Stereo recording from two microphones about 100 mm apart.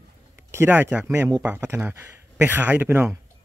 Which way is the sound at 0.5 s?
20° right (ahead or behind).